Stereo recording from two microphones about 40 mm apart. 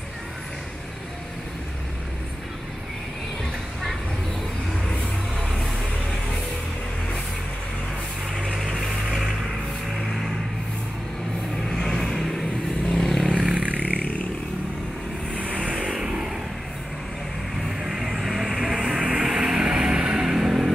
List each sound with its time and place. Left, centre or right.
8.5 s a sound: centre
11.5 s vehicle: centre
13.5 s vehicle: right
15.8 s vehicle: centre
17.6 s vehicle: centre
19.2 s music: centre
20.2 s vehicle: centre